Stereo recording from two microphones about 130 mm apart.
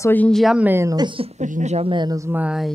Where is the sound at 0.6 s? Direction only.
15° right (ahead or behind).